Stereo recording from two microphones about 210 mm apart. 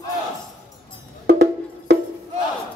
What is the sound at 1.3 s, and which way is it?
Wood block, 50° right (ahead or behind).